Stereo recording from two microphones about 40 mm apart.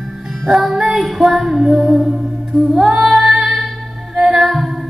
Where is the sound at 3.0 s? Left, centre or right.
Centre.